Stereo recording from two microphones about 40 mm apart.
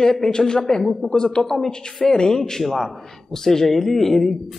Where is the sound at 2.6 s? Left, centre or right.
Centre.